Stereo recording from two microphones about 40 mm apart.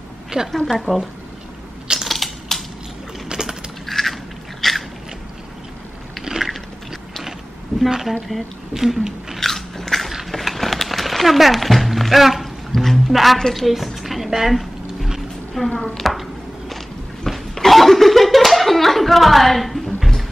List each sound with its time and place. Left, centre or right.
0.5 s a woman's voice: centre
2.0 s typewriter: centre
3.3 s a sound: centre
3.8 s biting: centre
6.3 s a sound: centre
8.1 s speech: centre
9.4 s biting: centre
10.3 s music: centre
12.7 s a sound: centre
15.6 s speech: centre
16.0 s chopping: centre
17.2 s slap: centre